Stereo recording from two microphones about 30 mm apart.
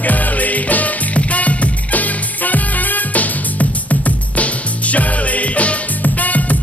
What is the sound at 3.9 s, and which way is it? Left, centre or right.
Music, left.